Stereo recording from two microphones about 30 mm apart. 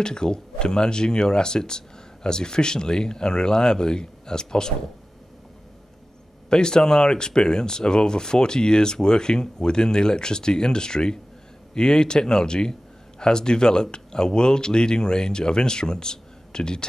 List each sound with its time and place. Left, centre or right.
0.0 s speech: left
6.5 s speech: left